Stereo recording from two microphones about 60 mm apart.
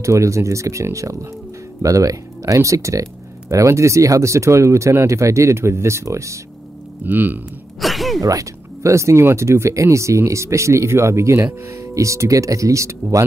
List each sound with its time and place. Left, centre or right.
0.0 s speech: right
1.8 s speech: right
7.1 s speech: right
7.8 s a sound: centre
8.2 s speech: right